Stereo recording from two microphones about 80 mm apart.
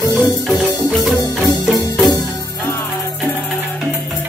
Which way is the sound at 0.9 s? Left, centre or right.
Centre.